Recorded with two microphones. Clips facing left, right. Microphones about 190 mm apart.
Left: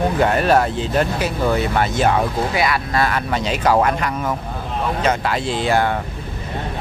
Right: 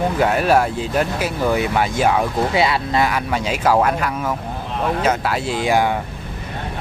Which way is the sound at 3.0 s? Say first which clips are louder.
Even; 10° right (ahead or behind).